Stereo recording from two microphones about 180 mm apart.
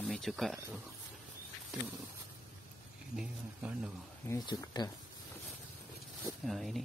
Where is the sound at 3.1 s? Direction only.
5° right (ahead or behind).